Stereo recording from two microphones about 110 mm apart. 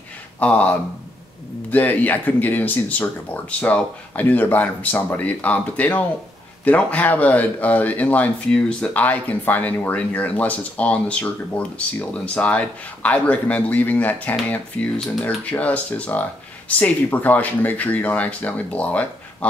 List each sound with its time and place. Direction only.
0.4 s speech: 10° left (ahead or behind)